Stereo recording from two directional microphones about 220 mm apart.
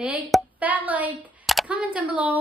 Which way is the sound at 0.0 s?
5° right (ahead or behind).